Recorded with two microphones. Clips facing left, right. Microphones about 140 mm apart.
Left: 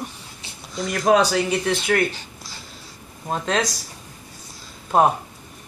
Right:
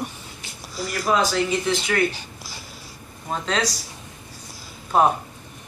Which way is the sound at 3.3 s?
50° left (ahead or behind).